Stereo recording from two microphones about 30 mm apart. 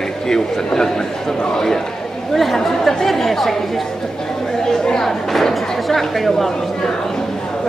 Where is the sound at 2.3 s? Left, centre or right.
Centre.